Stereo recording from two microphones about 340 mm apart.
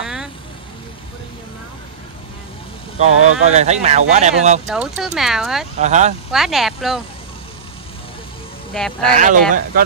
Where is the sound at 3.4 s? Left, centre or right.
Centre.